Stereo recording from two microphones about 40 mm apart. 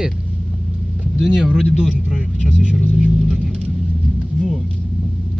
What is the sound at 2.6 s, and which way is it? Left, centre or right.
Vehicle, right.